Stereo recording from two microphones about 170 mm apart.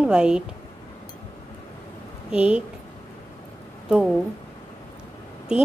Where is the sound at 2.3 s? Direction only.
5° right (ahead or behind).